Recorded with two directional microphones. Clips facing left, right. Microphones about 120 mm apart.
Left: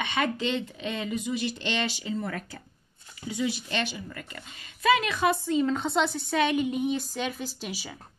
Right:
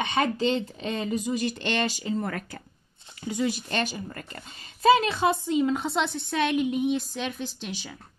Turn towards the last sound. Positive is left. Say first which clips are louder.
# right 1 dB
turn(degrees=5)  # may be behind; listen again after turning